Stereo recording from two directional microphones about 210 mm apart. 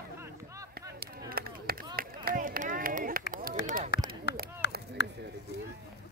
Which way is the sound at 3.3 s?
40° right (ahead or behind).